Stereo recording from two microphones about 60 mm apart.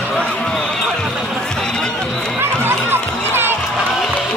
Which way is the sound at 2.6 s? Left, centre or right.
Right.